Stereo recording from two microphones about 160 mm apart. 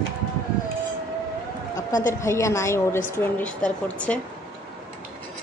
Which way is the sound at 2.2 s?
20° left (ahead or behind).